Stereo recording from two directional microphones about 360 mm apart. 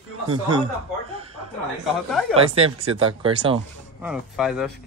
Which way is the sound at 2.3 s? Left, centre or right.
Centre.